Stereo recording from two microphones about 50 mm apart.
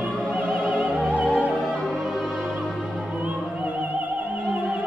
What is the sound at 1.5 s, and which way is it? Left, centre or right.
Music, centre.